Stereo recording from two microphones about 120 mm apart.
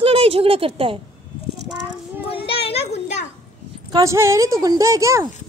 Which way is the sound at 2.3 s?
55° left (ahead or behind).